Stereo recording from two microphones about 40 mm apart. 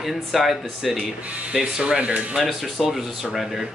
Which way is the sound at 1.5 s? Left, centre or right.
Centre.